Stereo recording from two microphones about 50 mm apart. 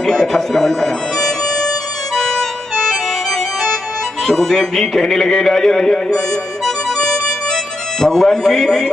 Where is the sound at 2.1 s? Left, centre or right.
Centre.